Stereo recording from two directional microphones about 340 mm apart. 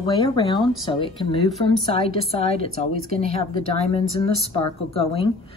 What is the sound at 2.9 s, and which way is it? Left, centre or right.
Speech, right.